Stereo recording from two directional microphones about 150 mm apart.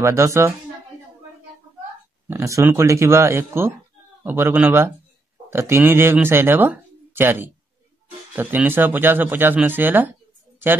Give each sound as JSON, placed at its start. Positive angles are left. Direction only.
{"t": 0.0, "sound": "speech", "side_deg": -20}
{"t": 2.2, "sound": "speech", "side_deg": -20}